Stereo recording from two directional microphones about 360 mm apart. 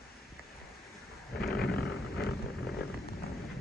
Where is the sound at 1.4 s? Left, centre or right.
Left.